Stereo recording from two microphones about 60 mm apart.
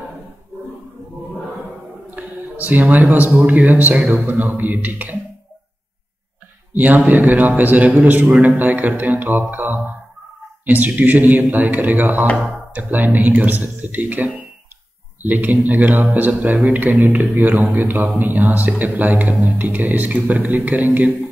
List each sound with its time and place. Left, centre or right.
2.0 s a sound: right
3.3 s a man's voice: right
6.7 s a man's voice: right